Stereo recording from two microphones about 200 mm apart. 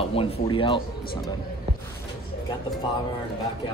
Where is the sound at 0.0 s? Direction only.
25° left (ahead or behind).